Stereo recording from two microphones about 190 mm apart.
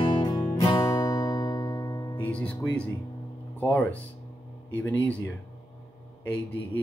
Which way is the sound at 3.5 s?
10° left (ahead or behind).